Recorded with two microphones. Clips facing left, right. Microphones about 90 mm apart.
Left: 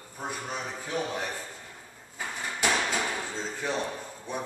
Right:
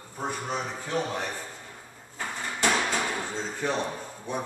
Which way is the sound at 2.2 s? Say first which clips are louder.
Right 2 dB; 5° left (ahead or behind).